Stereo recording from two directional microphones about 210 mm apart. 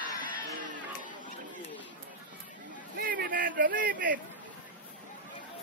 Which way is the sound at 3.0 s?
45° right (ahead or behind).